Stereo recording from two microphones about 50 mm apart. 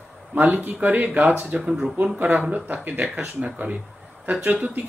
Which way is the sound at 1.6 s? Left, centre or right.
Centre.